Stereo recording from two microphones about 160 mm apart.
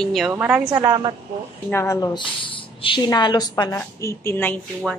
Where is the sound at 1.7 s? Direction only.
20° left (ahead or behind).